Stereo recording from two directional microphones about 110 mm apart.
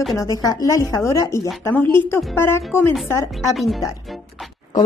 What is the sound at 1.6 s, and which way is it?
A woman's voice, 20° left (ahead or behind).